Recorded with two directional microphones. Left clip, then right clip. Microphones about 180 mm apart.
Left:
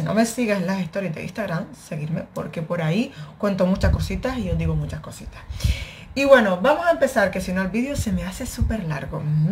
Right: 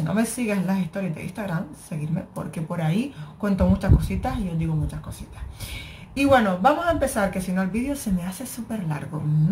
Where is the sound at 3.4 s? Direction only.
5° left (ahead or behind).